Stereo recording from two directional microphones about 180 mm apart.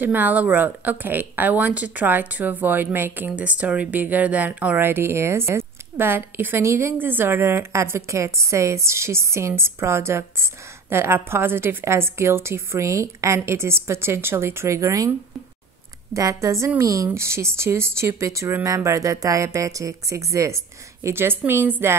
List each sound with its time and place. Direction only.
0.0 s speech: 10° right (ahead or behind)
16.1 s speech: 15° right (ahead or behind)